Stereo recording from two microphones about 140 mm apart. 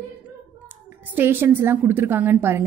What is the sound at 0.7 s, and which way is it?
A woman's voice, 15° right (ahead or behind).